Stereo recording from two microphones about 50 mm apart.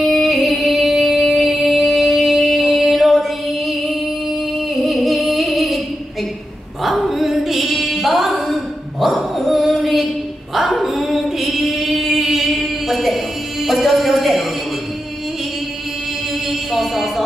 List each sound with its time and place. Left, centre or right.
0.0 s music: centre
6.8 s music: centre
9.0 s dog: centre
10.5 s female singing: centre
13.7 s music: centre
16.7 s music: centre